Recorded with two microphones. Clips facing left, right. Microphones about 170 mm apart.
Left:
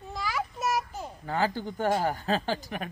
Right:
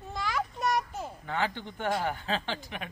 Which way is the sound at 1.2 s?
35° left (ahead or behind).